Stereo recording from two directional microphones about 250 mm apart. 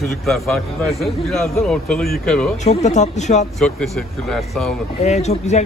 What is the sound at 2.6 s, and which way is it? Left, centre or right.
Speech, left.